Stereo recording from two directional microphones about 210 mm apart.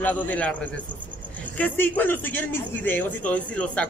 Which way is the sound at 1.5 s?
10° left (ahead or behind).